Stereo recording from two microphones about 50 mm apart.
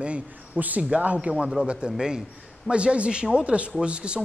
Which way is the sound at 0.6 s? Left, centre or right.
Right.